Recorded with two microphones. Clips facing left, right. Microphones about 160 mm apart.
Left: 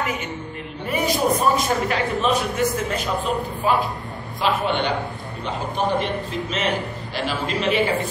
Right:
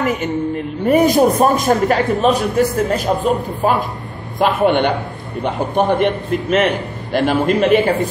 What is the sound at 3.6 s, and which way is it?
A man's voice, 45° right (ahead or behind).